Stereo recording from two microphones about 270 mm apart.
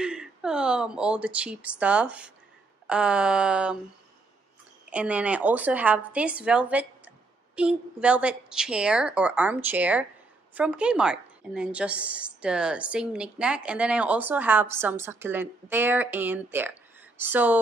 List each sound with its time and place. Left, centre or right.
0.0 s a woman's voice: centre
4.8 s a woman's voice: centre